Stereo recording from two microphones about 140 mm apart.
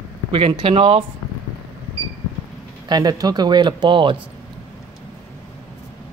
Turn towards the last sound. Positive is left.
turn(degrees=-35)  # may be behind; listen again after turning